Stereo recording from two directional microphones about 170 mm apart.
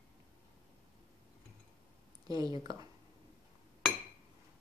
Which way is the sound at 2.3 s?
20° right (ahead or behind).